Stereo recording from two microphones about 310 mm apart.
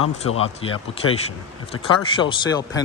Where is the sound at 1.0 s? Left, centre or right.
Left.